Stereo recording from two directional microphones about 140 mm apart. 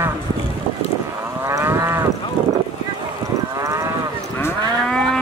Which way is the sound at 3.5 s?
25° right (ahead or behind).